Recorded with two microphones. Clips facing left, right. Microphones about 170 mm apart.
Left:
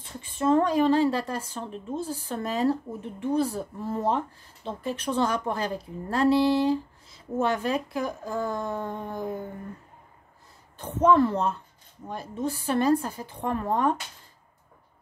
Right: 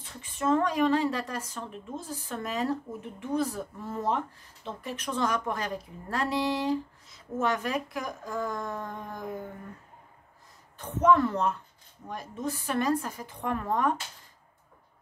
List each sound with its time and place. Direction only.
0.2 s a woman's voice: 30° left (ahead or behind)
10.8 s a woman's voice: 30° left (ahead or behind)